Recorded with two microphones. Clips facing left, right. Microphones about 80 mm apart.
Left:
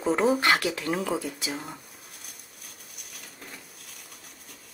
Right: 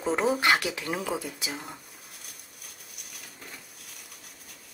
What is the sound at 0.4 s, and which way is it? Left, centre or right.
Speech, centre.